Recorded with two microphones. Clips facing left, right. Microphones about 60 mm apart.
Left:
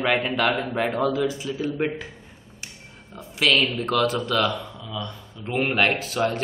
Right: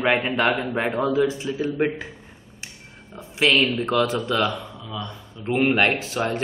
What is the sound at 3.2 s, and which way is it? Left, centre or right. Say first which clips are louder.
A man's voice: right 2 dB; right.